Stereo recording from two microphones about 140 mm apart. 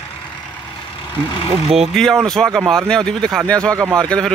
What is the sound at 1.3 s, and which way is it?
Speech, 40° left (ahead or behind).